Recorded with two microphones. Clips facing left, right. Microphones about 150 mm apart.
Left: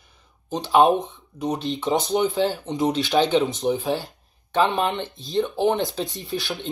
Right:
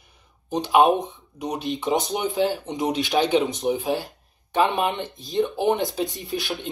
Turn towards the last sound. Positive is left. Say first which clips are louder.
# right 1 dB
turn(degrees=0)  # may be behind; listen again after turning